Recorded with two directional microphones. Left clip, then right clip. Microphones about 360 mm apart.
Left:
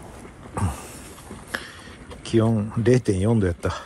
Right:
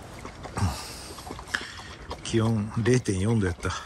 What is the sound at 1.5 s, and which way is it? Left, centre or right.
Boat, centre.